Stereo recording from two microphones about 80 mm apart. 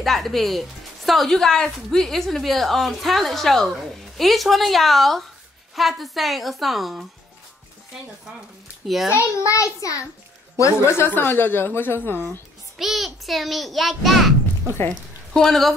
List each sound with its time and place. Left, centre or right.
0.0 s speech: centre
8.8 s speech: centre
9.1 s a child's voice: left
10.6 s a woman's voice: left
12.7 s a woman's voice: centre